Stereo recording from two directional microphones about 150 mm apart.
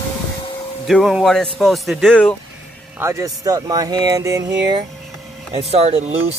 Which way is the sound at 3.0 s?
20° right (ahead or behind).